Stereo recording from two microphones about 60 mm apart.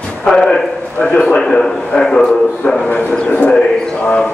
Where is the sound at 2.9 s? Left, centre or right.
Left.